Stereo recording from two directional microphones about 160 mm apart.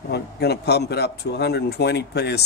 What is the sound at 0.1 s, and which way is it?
A man's voice, 90° left.